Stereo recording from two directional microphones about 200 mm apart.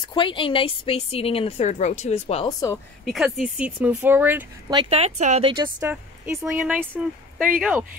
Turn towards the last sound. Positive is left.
turn(degrees=-5)  # may be behind; listen again after turning